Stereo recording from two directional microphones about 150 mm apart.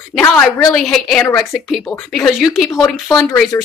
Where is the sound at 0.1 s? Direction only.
5° left (ahead or behind).